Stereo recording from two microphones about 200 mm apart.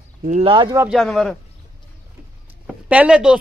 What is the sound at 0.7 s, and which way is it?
Speech, centre (ahead or behind).